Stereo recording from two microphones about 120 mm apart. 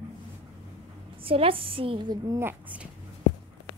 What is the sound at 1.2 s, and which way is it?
A woman's voice, 50° right (ahead or behind).